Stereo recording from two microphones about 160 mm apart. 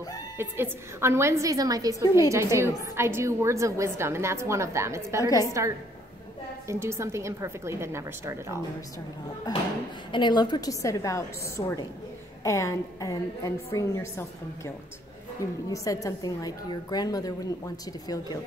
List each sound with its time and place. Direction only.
0.4 s a woman's voice: 15° right (ahead or behind)
5.2 s a woman's voice: 20° left (ahead or behind)
6.7 s a woman's voice: 15° right (ahead or behind)
10.1 s a woman's voice: 30° left (ahead or behind)
15.7 s a woman's voice: 20° left (ahead or behind)